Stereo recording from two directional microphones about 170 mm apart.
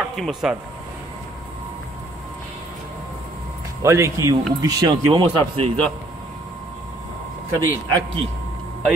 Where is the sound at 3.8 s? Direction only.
15° right (ahead or behind).